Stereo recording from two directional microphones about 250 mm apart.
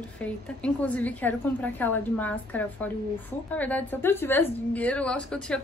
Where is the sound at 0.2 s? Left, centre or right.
Centre.